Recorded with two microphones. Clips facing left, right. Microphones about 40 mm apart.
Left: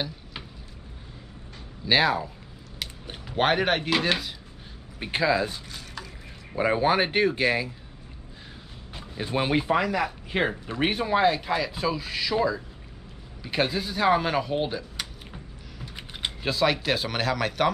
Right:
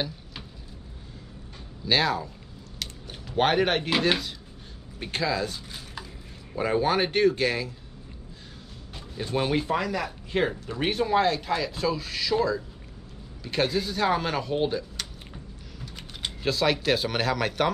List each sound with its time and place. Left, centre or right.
1.9 s speech: centre
3.3 s speech: centre
5.0 s speech: centre
8.9 s speech: centre
13.4 s a sound: centre
16.4 s speech: centre